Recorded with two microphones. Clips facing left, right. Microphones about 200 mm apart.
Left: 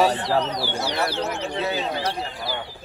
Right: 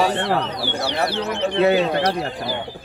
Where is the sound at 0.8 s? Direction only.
60° right (ahead or behind).